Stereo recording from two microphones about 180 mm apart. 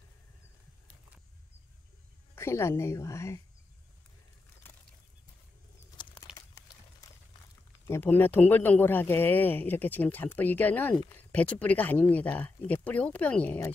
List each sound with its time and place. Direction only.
2.3 s a man's voice: 15° left (ahead or behind)
4.6 s a sound: 10° left (ahead or behind)
6.3 s crumpling: 20° left (ahead or behind)
7.8 s a man's voice: 10° left (ahead or behind)